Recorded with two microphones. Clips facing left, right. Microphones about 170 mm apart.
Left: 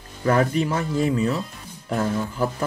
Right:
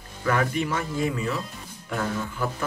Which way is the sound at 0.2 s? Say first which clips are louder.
Left 5 dB; 35° left (ahead or behind).